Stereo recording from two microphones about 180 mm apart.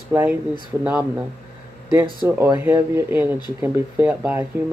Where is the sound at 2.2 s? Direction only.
10° right (ahead or behind).